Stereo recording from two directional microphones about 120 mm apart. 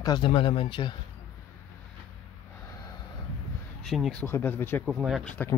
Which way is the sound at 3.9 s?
Centre (ahead or behind).